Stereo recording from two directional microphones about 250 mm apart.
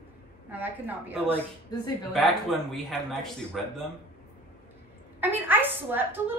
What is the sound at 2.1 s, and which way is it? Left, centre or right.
Speech, centre.